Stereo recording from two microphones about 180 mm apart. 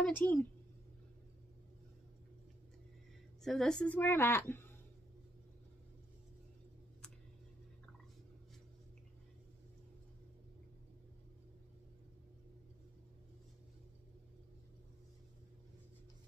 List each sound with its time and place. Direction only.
0.0 s a woman's voice: 10° left (ahead or behind)
3.4 s a woman's voice: 5° left (ahead or behind)